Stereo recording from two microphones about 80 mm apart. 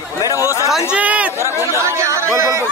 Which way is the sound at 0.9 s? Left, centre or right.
Centre.